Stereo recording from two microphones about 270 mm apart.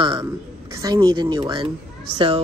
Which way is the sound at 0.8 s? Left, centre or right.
Centre.